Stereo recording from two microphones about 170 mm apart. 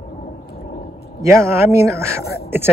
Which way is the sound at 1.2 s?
15° right (ahead or behind).